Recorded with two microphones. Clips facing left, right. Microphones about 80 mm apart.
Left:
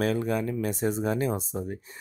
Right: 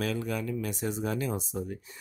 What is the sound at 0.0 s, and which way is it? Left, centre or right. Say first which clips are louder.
Speech: left 5 dB; left.